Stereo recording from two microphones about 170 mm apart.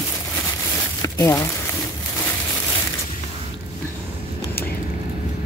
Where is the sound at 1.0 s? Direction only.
20° left (ahead or behind).